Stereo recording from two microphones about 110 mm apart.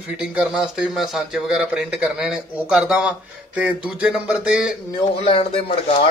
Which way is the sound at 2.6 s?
10° right (ahead or behind).